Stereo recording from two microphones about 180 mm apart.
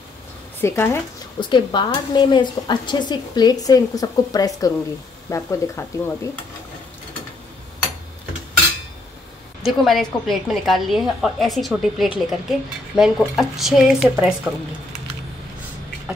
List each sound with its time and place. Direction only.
0.6 s speech: 15° left (ahead or behind)
1.4 s a woman's voice: 25° left (ahead or behind)
9.8 s a woman's voice: centre (ahead or behind)